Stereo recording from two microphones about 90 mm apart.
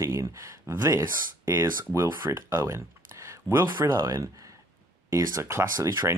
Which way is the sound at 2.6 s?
30° right (ahead or behind).